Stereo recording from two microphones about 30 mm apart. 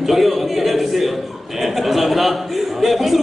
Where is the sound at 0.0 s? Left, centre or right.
Centre.